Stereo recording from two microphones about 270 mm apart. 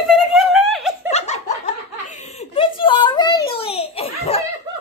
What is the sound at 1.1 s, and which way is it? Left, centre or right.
Laughter, left.